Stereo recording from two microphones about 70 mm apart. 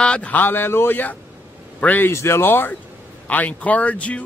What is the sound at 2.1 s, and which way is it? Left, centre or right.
Speech, left.